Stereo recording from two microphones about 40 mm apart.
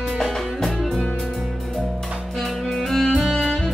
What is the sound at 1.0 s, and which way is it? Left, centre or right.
Music, centre.